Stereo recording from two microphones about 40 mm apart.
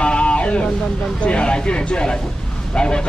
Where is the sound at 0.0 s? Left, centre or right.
Left.